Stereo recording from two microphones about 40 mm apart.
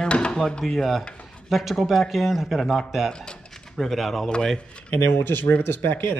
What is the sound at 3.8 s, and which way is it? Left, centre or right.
Speech, centre.